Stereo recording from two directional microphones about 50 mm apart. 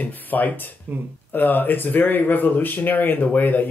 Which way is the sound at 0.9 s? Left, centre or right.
Right.